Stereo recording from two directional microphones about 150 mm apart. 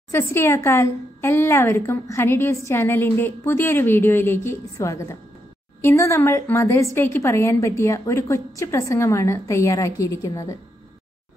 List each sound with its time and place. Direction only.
0.1 s a woman's voice: 15° left (ahead or behind)